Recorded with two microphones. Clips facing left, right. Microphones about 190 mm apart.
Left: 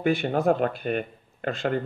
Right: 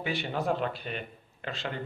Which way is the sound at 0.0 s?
50° left (ahead or behind).